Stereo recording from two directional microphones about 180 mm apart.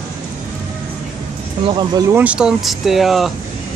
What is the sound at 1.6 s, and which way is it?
Speech, 25° right (ahead or behind).